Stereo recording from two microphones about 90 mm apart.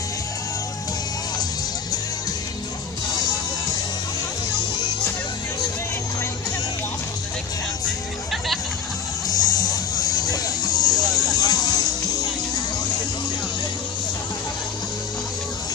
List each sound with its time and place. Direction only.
9.3 s music: 45° left (ahead or behind)
11.2 s vehicle: 45° left (ahead or behind)